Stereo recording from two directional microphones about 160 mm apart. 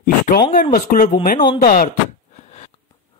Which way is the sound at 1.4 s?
25° left (ahead or behind).